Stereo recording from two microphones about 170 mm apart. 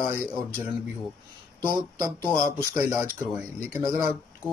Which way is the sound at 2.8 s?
10° right (ahead or behind).